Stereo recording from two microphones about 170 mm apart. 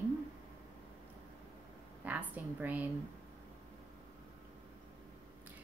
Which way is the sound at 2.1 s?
10° right (ahead or behind).